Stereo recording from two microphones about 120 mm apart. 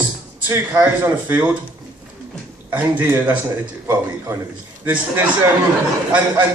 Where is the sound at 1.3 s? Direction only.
10° right (ahead or behind).